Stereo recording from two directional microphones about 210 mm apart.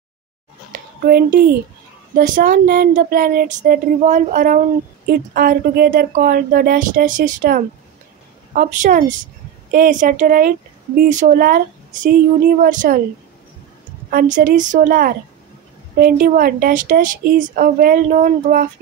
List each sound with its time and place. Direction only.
0.7 s a child's voice: 45° right (ahead or behind)
14.1 s speech: 40° right (ahead or behind)